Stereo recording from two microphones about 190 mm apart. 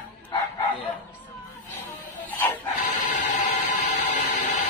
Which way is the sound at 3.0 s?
40° left (ahead or behind).